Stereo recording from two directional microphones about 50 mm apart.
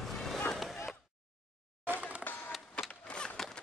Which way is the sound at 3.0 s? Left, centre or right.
Centre.